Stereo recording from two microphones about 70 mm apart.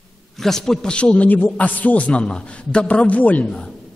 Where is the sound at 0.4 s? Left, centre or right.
Centre.